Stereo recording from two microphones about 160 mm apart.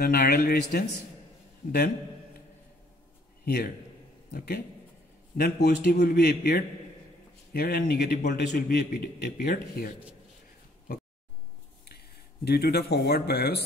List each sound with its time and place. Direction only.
0.0 s a man's voice: 70° left (ahead or behind)
3.4 s speech: 80° left
5.4 s speech: 85° left
5.9 s speech: 75° left (ahead or behind)
7.5 s a man's voice: 75° left (ahead or behind)
8.2 s a man's voice: 60° left (ahead or behind); by 9.8 s 85° left
12.4 s speech: 80° left